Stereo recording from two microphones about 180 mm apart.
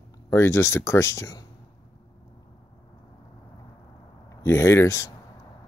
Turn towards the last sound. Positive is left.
turn(degrees=15)  # may be behind; listen again after turning